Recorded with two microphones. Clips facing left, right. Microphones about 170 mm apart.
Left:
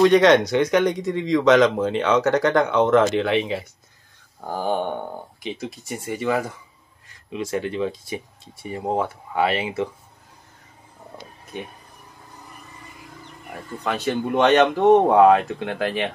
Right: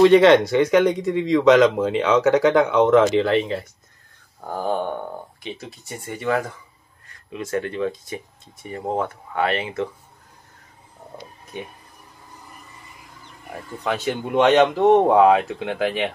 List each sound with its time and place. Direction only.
0.0 s speech: centre (ahead or behind)
7.3 s speech: 20° left (ahead or behind)
13.8 s speech: 5° right (ahead or behind)